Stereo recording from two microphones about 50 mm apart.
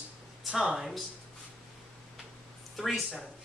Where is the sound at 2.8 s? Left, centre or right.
Centre.